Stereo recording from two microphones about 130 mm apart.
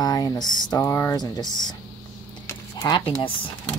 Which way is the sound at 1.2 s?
30° left (ahead or behind).